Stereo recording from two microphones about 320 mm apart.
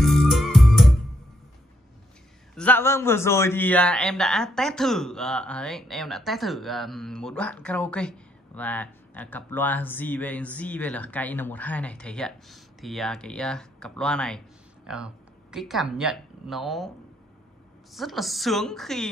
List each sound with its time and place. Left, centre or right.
0.0 s music: centre
2.5 s a man's voice: centre
17.9 s a man's voice: centre